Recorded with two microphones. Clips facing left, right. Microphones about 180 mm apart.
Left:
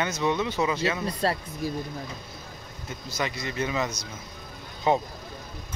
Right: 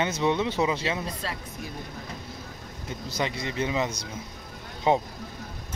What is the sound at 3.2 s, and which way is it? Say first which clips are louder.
Speech: right 1 dB; 25° right (ahead or behind).